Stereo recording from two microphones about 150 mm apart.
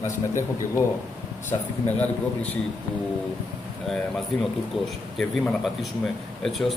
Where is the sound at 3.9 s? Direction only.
5° left (ahead or behind).